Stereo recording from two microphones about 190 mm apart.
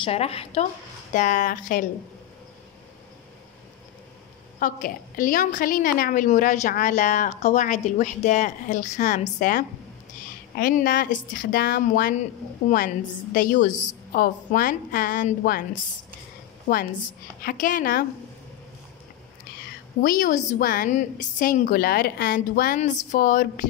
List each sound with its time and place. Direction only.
0.0 s a woman's voice: 30° left (ahead or behind)
1.1 s a woman's voice: 40° left (ahead or behind)
4.6 s a woman's voice: 45° left (ahead or behind)
17.4 s a woman's voice: 45° left (ahead or behind)
20.0 s a woman's voice: 45° left (ahead or behind)